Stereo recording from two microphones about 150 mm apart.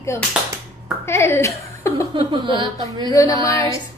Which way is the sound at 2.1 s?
30° right (ahead or behind).